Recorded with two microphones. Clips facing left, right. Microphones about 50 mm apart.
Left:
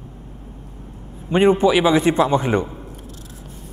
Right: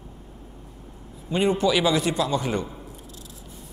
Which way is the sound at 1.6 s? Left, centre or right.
Left.